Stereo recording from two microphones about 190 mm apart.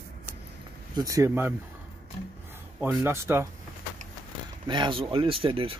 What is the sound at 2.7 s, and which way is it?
Speech, 15° right (ahead or behind).